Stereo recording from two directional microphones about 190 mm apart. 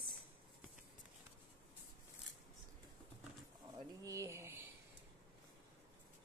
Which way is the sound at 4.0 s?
15° right (ahead or behind).